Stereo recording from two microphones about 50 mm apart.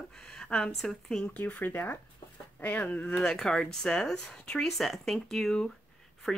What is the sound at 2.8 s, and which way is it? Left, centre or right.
Speech, left.